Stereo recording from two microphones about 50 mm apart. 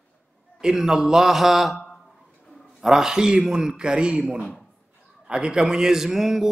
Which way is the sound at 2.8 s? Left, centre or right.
Centre.